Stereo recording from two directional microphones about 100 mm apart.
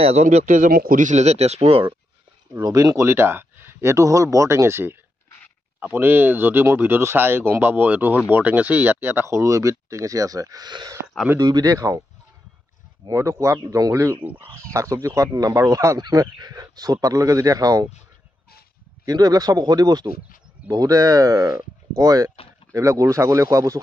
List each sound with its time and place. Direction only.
0.0 s speech: 90° right
2.5 s speech: 35° right (ahead or behind)
13.1 s speech: 30° right (ahead or behind)
14.2 s speech: 20° right (ahead or behind)
14.7 s speech: 30° right (ahead or behind)
19.0 s speech: 40° right (ahead or behind)